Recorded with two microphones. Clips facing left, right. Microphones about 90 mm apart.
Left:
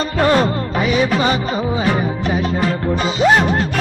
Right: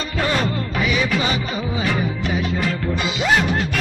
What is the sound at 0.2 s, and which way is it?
Music, 40° left (ahead or behind).